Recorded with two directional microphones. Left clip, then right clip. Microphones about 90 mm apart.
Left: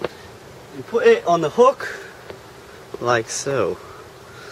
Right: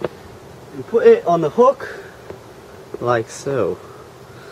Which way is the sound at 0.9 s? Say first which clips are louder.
Right 3 dB; centre (ahead or behind).